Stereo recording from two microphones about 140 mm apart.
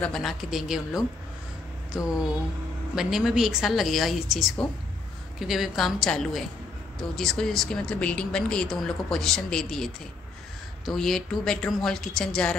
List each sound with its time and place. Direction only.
0.0 s speech: centre (ahead or behind)
2.0 s speech: 25° left (ahead or behind)
3.0 s speech: 5° right (ahead or behind)
10.9 s speech: centre (ahead or behind)